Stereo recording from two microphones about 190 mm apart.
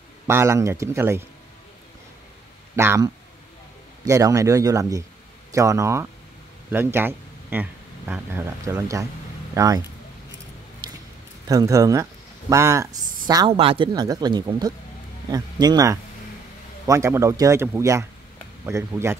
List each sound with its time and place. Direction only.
0.3 s speech: 15° right (ahead or behind)
2.7 s speech: 15° right (ahead or behind)
11.4 s speech: 15° right (ahead or behind)
13.5 s speech: 30° right (ahead or behind)